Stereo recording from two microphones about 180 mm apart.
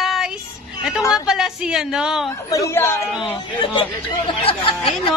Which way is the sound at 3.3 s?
30° left (ahead or behind).